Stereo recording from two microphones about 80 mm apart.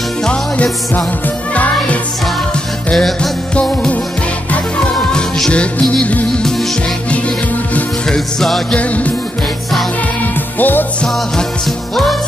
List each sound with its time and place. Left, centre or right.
0.2 s music: centre
8.4 s music: centre
8.7 s music: centre
10.6 s music: left
11.9 s music: centre